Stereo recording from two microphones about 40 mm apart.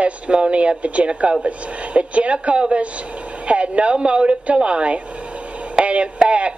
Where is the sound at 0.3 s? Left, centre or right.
Right.